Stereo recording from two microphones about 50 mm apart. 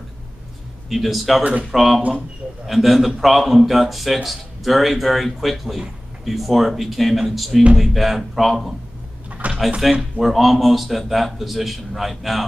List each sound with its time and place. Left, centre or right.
0.8 s a man's voice: centre
1.4 s speech: right
1.7 s a man's voice: centre
9.4 s drawer open or close: right
10.1 s a man's voice: centre